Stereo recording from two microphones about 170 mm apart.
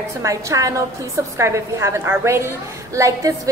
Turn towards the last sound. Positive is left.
turn(degrees=-20)  # may be behind; listen again after turning